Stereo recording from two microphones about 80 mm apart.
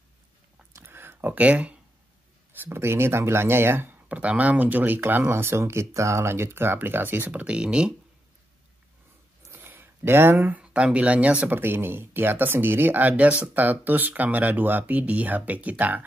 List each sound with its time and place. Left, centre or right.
0.7 s a sound: right
2.5 s speech: right; by 7.9 s centre
9.6 s speech: right